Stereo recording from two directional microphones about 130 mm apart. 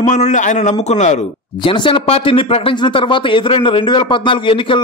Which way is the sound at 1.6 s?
40° left (ahead or behind).